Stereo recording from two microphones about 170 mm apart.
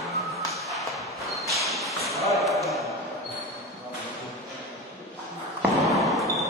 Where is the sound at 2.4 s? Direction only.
Centre (ahead or behind).